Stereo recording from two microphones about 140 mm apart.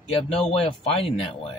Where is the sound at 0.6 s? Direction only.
45° left (ahead or behind).